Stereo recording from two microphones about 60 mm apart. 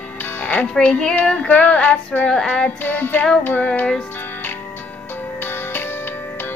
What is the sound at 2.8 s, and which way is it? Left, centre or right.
Music, left.